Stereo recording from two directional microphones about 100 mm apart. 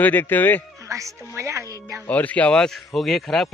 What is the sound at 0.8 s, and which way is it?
Music, 30° right (ahead or behind).